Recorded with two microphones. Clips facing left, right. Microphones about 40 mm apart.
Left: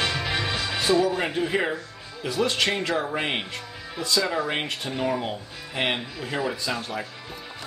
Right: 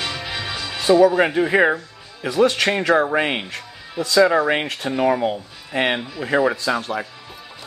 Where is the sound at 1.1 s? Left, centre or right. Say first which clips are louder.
Right 8 dB; right.